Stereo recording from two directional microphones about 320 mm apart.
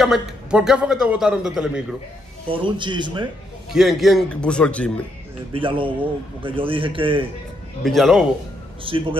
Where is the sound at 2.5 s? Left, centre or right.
Centre.